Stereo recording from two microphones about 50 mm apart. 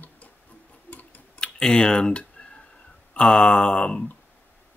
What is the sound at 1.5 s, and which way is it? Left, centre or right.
Speech, centre.